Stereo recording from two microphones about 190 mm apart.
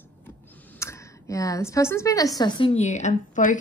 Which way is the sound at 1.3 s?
15° left (ahead or behind).